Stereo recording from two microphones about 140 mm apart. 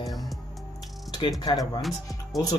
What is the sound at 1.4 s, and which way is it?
Speech, 30° left (ahead or behind).